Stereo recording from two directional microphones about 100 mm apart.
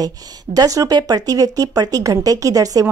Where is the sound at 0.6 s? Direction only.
35° right (ahead or behind).